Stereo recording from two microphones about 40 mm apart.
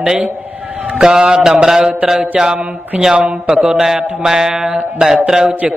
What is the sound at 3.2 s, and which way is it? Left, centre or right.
Speech, right.